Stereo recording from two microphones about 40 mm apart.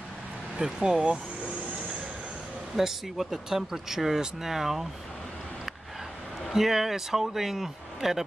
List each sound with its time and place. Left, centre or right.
0.6 s speech: centre
2.7 s speech: centre
6.5 s speech: centre